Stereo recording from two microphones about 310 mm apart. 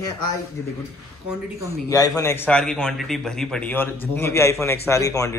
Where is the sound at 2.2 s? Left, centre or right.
Centre.